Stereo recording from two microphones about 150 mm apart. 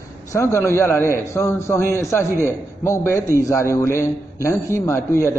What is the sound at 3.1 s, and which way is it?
Speech, 15° right (ahead or behind).